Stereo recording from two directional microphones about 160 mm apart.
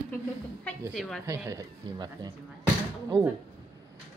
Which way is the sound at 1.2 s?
20° right (ahead or behind).